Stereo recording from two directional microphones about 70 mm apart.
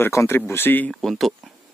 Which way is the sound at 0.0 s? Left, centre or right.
Left.